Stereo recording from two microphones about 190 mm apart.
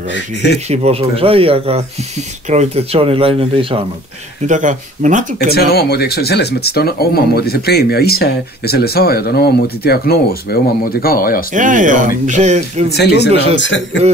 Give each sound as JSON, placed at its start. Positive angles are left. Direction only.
{"t": 0.1, "sound": "speech", "side_deg": 60}
{"t": 0.7, "sound": "speech", "side_deg": -30}
{"t": 4.5, "sound": "speech", "side_deg": -40}
{"t": 5.5, "sound": "speech", "side_deg": 55}
{"t": 11.5, "sound": "speech", "side_deg": -45}
{"t": 12.9, "sound": "speech", "side_deg": 60}
{"t": 13.6, "sound": "a man's voice", "side_deg": 75}